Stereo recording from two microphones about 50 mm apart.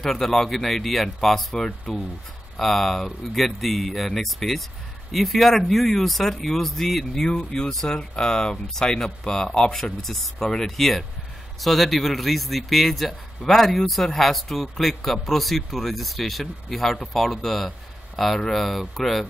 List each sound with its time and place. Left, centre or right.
0.0 s a man's voice: centre
7.3 s a man's voice: centre